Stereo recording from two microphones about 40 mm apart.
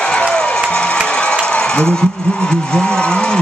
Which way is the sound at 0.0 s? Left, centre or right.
Left.